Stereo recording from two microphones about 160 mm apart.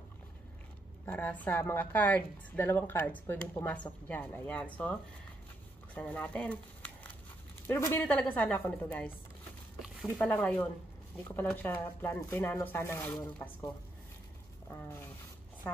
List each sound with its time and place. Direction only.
1.0 s a woman's voice: 10° left (ahead or behind)
5.9 s a woman's voice: 10° left (ahead or behind)
15.7 s a woman's voice: 15° left (ahead or behind)